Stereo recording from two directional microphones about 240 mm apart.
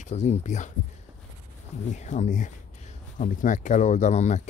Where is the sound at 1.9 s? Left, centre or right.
Left.